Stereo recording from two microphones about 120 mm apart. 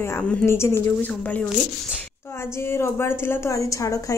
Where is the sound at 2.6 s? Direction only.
20° left (ahead or behind).